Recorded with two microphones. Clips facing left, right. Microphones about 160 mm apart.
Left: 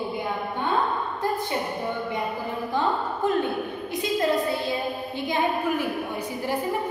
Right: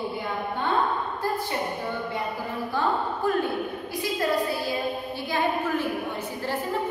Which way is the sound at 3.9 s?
20° left (ahead or behind).